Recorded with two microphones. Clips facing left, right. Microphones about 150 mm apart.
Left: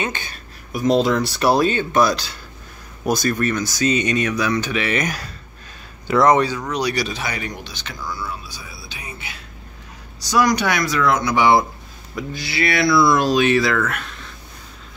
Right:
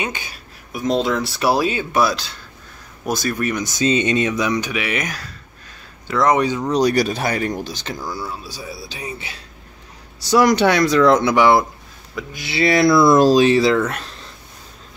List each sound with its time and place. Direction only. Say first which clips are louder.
0.0 s speech: left 1 dB; 10° right (ahead or behind)
0.7 s speech: left 2 dB; centre (ahead or behind)
6.0 s speech: left 2 dB; 5° left (ahead or behind)
6.3 s speech: even; 20° right (ahead or behind)
6.7 s speech: right 6 dB; 45° right (ahead or behind)
12.3 s speech: right 2 dB; 20° right (ahead or behind)
13.2 s speech: right 4 dB; 35° right (ahead or behind)